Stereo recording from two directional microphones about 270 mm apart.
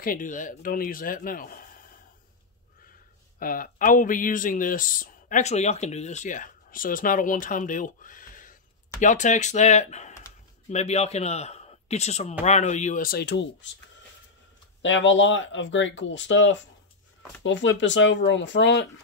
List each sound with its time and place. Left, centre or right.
0.0 s speech: left
3.3 s speech: left
14.8 s speech: left